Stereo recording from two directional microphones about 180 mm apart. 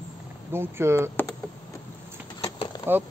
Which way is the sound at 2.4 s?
30° left (ahead or behind).